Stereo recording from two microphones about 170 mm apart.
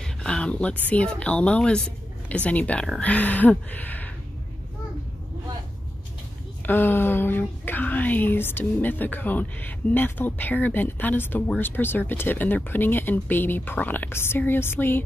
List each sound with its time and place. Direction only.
0.0 s a woman's voice: 5° left (ahead or behind)
6.6 s a woman's voice: 10° left (ahead or behind)